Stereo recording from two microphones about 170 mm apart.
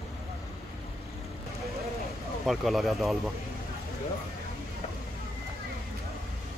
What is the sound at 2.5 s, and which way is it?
Speech, centre (ahead or behind).